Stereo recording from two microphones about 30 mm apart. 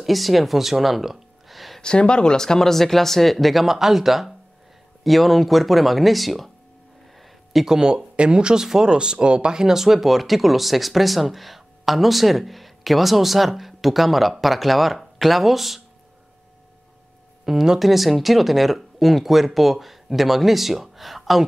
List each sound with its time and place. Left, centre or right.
0.0 s speech: centre
1.8 s speech: left; by 3.6 s centre
3.6 s speech: centre
7.6 s speech: right
8.2 s speech: right
9.6 s speech: centre
10.0 s speech: centre
17.5 s speech: centre